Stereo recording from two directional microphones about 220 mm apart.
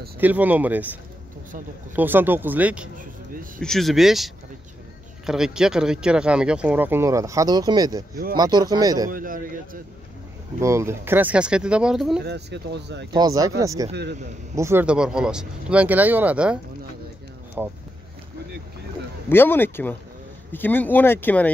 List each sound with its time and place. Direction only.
0.2 s speech: 10° right (ahead or behind)
2.0 s speech: 10° right (ahead or behind)
9.1 s a man's voice: 40° right (ahead or behind)
10.6 s speech: 15° right (ahead or behind)
12.3 s speech: 50° right (ahead or behind)
13.1 s speech: 15° right (ahead or behind)
17.6 s speech: 10° right (ahead or behind)
19.2 s speech: 10° left (ahead or behind)